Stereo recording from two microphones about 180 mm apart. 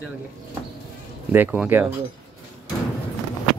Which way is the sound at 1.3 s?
10° right (ahead or behind).